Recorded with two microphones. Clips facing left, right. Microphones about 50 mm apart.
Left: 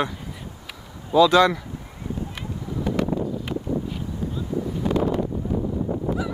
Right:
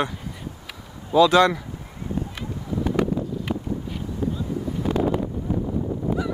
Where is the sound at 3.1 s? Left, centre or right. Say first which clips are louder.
Left 1 dB; left.